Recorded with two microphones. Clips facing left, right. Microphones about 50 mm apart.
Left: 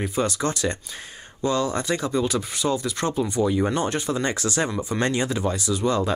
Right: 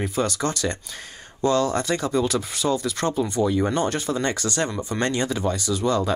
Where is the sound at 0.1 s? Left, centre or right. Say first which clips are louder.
Even; centre.